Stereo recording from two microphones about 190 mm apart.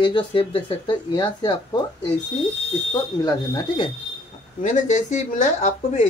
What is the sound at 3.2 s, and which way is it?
Speech, 20° left (ahead or behind).